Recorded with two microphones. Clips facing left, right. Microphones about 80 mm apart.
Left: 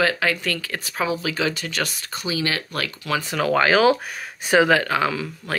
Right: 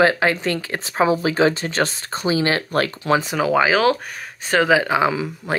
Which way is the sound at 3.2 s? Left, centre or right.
Centre.